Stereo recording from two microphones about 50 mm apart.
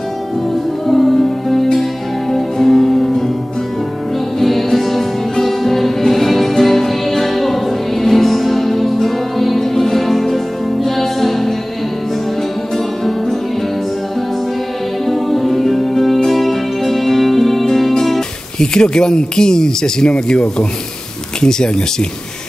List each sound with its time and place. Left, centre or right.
0.8 s music: centre
4.4 s music: centre
12.7 s music: centre
15.0 s music: centre
18.6 s speech: centre